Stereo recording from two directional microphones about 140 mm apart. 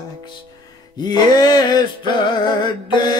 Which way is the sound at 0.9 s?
30° left (ahead or behind).